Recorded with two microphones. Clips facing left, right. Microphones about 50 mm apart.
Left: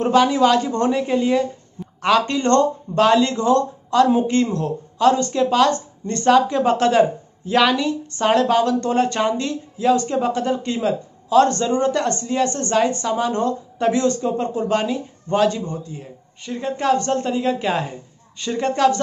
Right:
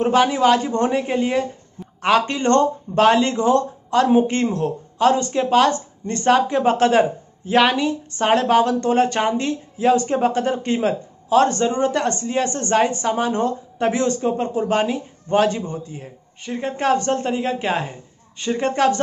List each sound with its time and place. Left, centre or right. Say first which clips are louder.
0.0 s a woman's voice: left 1 dB; centre; by 11.4 s right
11.7 s speech: left 1 dB; centre